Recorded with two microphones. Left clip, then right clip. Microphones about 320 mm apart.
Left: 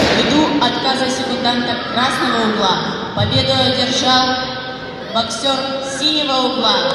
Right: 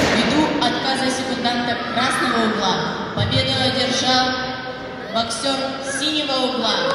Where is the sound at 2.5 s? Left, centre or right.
Left.